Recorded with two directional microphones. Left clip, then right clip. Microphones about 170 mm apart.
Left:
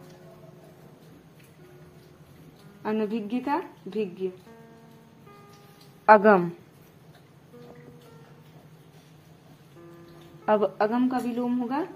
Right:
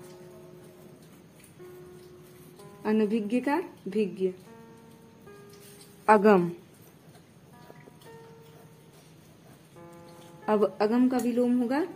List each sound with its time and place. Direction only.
2.8 s a woman's voice: 25° right (ahead or behind)
6.0 s a woman's voice: 15° right (ahead or behind)
10.4 s a woman's voice: 15° right (ahead or behind)